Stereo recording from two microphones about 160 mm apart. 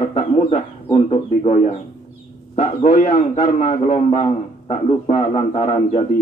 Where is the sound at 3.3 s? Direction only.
40° left (ahead or behind).